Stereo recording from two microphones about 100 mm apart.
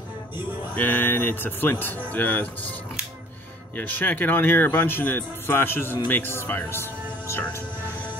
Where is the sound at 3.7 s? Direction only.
20° left (ahead or behind).